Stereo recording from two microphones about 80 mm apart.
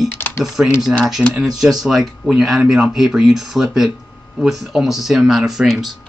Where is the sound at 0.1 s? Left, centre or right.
Left.